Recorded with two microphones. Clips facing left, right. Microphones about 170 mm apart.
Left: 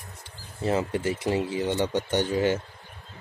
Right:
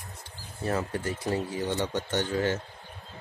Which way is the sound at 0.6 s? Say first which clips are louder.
Left 4 dB; 20° left (ahead or behind).